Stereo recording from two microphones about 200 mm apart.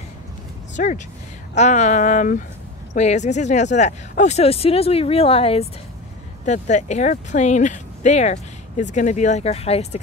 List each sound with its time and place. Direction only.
0.7 s speech: 40° left (ahead or behind)